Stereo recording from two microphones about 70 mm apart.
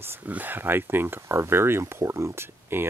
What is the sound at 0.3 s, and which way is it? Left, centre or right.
Speech, right.